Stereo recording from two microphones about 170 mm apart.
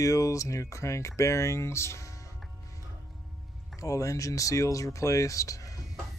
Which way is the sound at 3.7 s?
20° left (ahead or behind).